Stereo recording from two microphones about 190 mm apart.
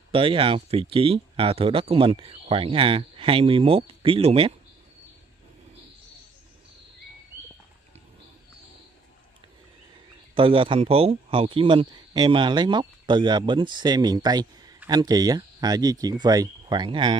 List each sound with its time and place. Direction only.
0.1 s speech: 30° right (ahead or behind)
10.3 s speech: 30° right (ahead or behind)